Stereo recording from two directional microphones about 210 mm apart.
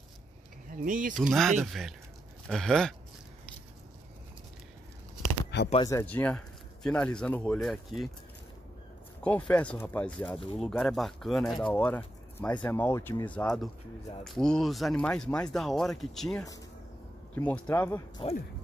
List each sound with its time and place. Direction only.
0.7 s speech: 40° right (ahead or behind)
1.1 s speech: centre (ahead or behind)
5.5 s a sound: 55° left (ahead or behind)
5.9 s speech: 10° left (ahead or behind)
9.2 s speech: 5° left (ahead or behind)